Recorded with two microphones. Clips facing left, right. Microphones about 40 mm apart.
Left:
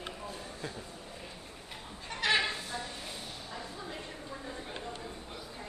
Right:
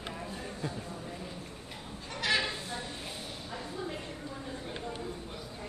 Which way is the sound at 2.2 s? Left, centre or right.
Left.